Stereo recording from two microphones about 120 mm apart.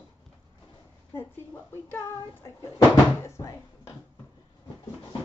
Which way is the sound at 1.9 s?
25° left (ahead or behind).